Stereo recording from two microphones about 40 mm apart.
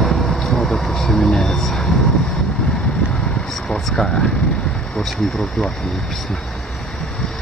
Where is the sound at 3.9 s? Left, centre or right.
Centre.